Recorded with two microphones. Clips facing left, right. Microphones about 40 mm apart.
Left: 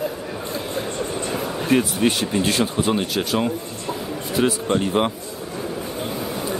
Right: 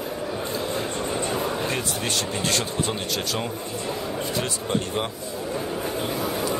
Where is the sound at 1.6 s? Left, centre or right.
Centre.